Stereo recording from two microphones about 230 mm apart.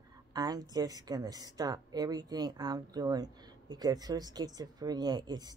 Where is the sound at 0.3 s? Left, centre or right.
Centre.